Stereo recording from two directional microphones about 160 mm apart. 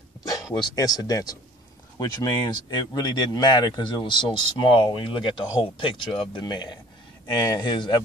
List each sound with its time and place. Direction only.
0.2 s speech: 20° left (ahead or behind)